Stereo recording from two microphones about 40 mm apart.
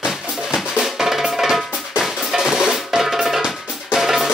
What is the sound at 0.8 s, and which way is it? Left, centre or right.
Drum, centre.